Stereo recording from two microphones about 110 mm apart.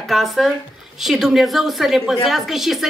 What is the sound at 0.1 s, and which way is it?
Speech, centre (ahead or behind).